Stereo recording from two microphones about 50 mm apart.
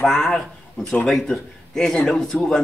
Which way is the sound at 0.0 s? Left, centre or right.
Centre.